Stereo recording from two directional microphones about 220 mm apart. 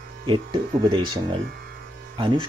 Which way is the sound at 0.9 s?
20° right (ahead or behind).